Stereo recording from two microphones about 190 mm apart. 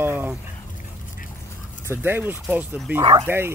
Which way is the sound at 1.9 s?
10° right (ahead or behind).